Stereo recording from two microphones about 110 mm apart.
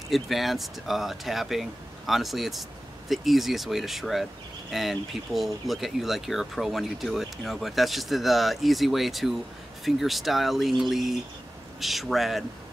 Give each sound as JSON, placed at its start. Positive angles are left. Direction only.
{"t": 0.1, "sound": "speech", "side_deg": 0}